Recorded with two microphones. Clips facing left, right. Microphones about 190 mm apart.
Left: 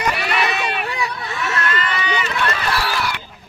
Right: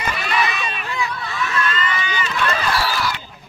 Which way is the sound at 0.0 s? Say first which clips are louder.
Left 2 dB; 70° left (ahead or behind).